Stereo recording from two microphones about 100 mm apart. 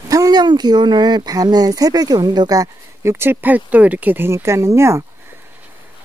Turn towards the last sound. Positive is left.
turn(degrees=-25)  # may be behind; listen again after turning